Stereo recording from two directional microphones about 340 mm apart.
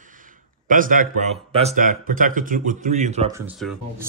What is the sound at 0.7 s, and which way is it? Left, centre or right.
A man's voice, right.